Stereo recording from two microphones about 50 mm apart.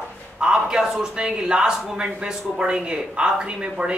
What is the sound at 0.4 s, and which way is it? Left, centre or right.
A man's voice, centre.